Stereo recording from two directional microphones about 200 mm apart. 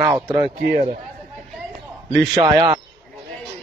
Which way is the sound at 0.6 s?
40° right (ahead or behind).